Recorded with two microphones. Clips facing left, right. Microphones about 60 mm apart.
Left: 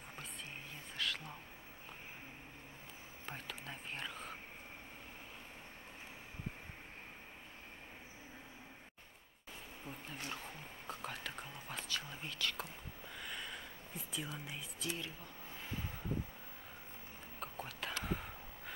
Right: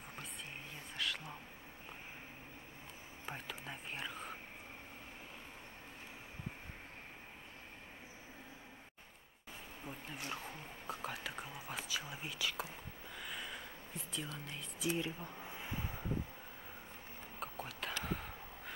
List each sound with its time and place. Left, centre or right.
0.9 s whispering: centre
3.3 s whispering: centre
9.8 s whispering: centre
14.9 s a sound: right
17.4 s whispering: centre